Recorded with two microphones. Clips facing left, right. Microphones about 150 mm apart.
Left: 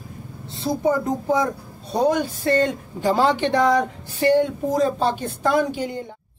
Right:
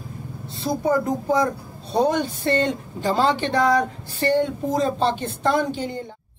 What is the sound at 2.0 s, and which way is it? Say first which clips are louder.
Speech: left 3 dB; 5° left (ahead or behind).